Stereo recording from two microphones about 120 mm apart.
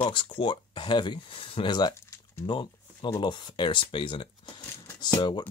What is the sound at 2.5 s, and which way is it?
Speech, 40° left (ahead or behind).